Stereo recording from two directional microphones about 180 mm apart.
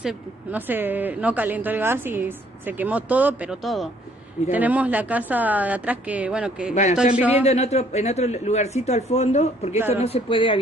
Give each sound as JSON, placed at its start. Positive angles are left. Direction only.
{"t": 0.0, "sound": "speech", "side_deg": -10}
{"t": 6.7, "sound": "a man's voice", "side_deg": 40}
{"t": 7.2, "sound": "speech", "side_deg": -10}
{"t": 7.4, "sound": "a man's voice", "side_deg": 35}